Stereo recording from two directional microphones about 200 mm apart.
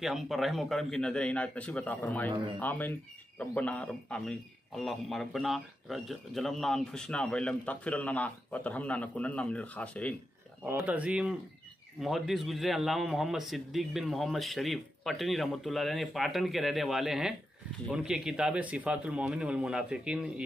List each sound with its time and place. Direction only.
0.0 s a man's voice: centre (ahead or behind)
2.3 s speech: 25° right (ahead or behind)
2.6 s a man's voice: 10° left (ahead or behind)
10.7 s a man's voice: 10° right (ahead or behind)